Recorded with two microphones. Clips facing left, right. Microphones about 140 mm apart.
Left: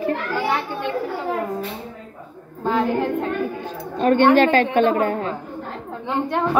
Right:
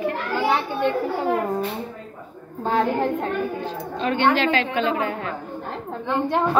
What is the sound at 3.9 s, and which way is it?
A woman's voice, 50° left (ahead or behind).